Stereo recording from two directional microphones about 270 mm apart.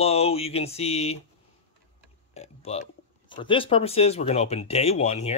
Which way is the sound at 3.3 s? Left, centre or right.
Centre.